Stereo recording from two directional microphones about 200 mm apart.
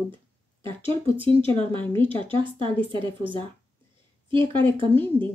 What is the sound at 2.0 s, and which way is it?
Speech, 25° right (ahead or behind).